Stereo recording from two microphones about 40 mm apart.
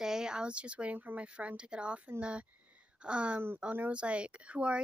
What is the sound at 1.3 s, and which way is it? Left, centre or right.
Speech, right.